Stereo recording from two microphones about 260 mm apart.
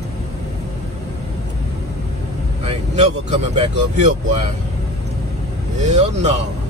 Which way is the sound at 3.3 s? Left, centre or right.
Right.